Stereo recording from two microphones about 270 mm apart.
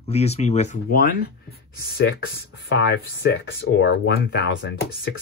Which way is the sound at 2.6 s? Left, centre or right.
Left.